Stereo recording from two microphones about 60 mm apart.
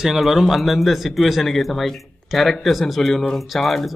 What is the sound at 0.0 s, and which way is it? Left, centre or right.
Speech, centre.